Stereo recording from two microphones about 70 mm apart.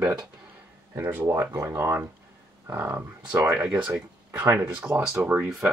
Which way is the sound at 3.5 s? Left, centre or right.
Centre.